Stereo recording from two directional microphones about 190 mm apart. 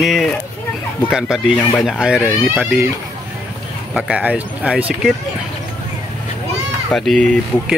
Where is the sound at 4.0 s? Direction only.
5° right (ahead or behind).